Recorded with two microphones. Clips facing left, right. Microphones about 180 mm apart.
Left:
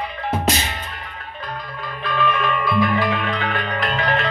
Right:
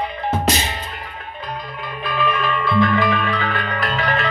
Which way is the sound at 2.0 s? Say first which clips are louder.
Even; 5° right (ahead or behind).